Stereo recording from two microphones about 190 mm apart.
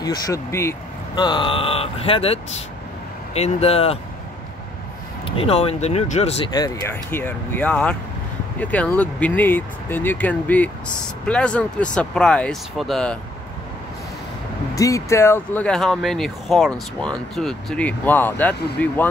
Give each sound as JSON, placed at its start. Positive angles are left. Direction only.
{"t": 0.0, "sound": "speech", "side_deg": 20}
{"t": 5.2, "sound": "speech", "side_deg": 30}
{"t": 6.5, "sound": "speech", "side_deg": 20}
{"t": 14.8, "sound": "speech", "side_deg": 15}